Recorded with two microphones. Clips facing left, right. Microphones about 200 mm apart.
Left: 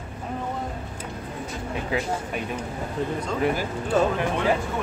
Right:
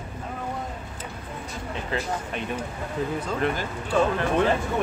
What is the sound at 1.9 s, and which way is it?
Speech, 10° left (ahead or behind).